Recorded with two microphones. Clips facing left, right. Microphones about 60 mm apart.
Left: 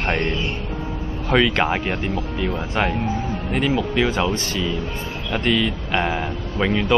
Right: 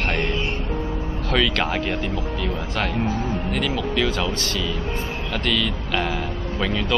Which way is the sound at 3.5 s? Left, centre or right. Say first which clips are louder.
Left 6 dB; centre.